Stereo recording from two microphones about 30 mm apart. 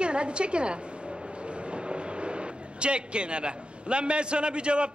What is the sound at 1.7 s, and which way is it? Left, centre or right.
Vehicle, right.